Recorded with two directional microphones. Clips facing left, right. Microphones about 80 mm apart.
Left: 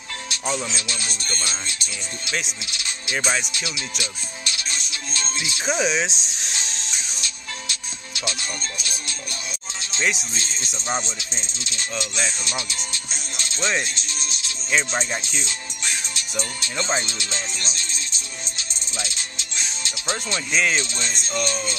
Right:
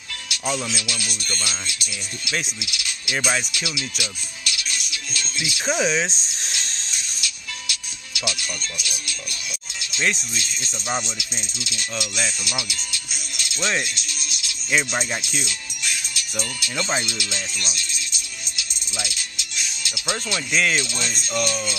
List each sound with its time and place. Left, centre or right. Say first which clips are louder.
0.3 s speech: right 1 dB; left
5.7 s music: right 1 dB; centre
7.2 s music: left 1 dB; left
10.3 s speech: even; left
13.8 s music: left 1 dB; left